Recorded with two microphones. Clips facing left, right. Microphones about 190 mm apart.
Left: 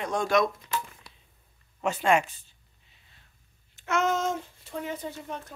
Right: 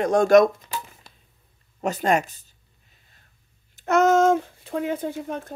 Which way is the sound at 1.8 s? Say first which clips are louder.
Right 2 dB; 40° right (ahead or behind).